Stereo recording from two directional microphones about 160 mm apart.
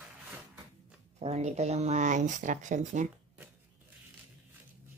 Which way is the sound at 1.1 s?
45° right (ahead or behind).